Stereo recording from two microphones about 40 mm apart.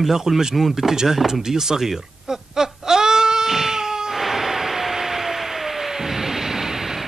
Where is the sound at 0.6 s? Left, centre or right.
Centre.